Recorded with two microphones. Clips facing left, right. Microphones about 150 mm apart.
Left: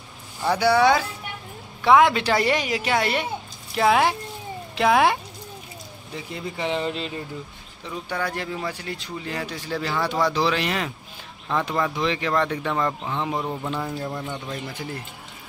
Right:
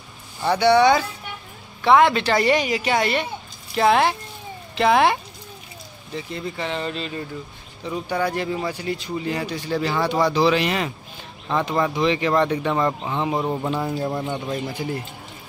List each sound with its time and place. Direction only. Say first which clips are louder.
0.4 s speech: right 3 dB; 5° left (ahead or behind)
8.1 s speech: right 5 dB; 5° right (ahead or behind)
13.4 s speech: right 4 dB; 25° right (ahead or behind)
14.8 s speech: right 6 dB; 10° right (ahead or behind)